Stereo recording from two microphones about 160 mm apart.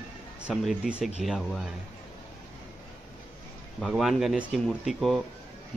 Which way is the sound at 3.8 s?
Centre (ahead or behind).